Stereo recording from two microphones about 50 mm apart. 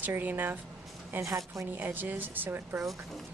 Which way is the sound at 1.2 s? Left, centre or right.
Right.